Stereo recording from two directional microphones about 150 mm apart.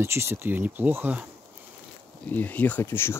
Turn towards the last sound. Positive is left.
turn(degrees=15)  # may be behind; listen again after turning